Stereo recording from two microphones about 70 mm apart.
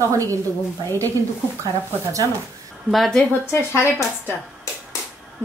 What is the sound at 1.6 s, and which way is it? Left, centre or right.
Speech, right.